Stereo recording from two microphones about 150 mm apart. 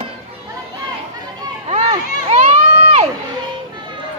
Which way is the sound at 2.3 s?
50° right (ahead or behind).